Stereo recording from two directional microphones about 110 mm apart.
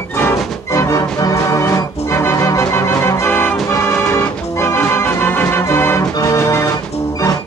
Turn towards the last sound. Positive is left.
turn(degrees=25)  # may be behind; listen again after turning